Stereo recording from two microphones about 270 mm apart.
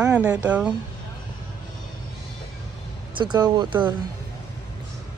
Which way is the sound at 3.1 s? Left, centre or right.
Centre.